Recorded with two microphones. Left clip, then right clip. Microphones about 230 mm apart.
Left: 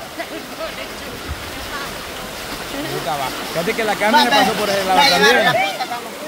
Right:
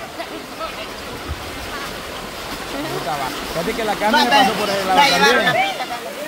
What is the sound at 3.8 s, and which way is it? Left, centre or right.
Speech, centre.